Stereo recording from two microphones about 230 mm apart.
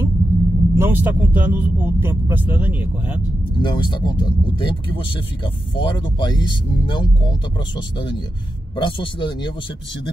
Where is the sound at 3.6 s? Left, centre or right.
Centre.